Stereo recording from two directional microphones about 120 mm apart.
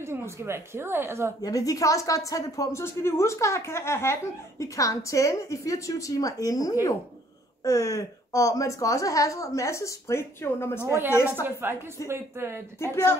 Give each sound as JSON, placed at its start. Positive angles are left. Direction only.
{"t": 0.0, "sound": "speech", "side_deg": -20}
{"t": 1.4, "sound": "speech", "side_deg": 30}
{"t": 11.6, "sound": "a woman's voice", "side_deg": -20}
{"t": 12.7, "sound": "speech", "side_deg": 20}